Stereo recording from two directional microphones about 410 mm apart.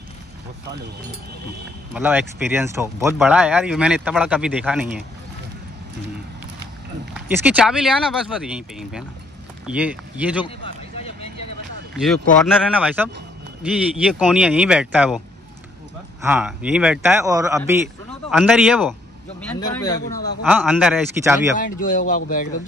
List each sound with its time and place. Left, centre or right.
2.0 s speech: centre
7.2 s speech: centre
10.4 s a sound: centre
12.4 s speech: centre
20.4 s speech: centre
21.5 s speech: centre